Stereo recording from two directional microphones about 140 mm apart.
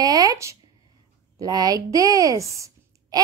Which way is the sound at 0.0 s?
25° right (ahead or behind).